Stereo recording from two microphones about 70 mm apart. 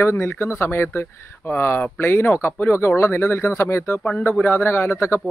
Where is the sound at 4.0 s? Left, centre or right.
Centre.